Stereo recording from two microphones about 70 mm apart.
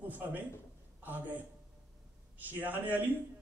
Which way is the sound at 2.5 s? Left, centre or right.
Right.